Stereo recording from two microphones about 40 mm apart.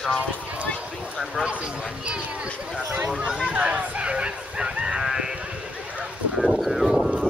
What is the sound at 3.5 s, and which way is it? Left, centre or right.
Honk, right.